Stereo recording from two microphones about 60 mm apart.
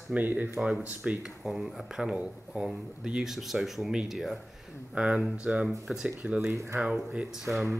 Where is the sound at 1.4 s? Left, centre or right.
Centre.